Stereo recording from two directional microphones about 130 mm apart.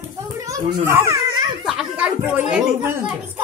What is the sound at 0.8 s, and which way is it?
Speech, 20° right (ahead or behind).